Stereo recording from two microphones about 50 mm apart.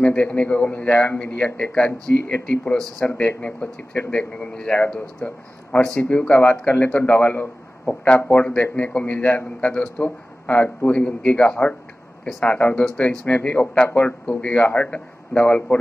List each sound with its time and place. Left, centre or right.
0.0 s a man's voice: left